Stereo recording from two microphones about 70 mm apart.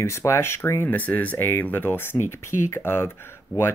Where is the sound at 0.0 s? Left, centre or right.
Left.